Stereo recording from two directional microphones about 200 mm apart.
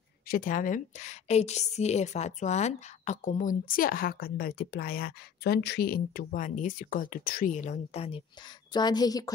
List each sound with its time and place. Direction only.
0.3 s a woman's voice: 40° left (ahead or behind)
8.7 s a woman's voice: 20° left (ahead or behind)